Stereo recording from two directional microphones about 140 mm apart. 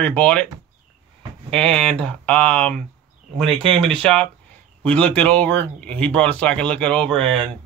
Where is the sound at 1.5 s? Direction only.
5° left (ahead or behind).